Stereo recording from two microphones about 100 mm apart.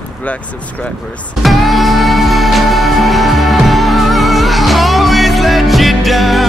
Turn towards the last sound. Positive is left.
turn(degrees=0)  # may be behind; listen again after turning